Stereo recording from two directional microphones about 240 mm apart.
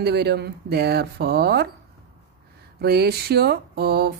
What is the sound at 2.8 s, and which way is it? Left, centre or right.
A woman's voice, right.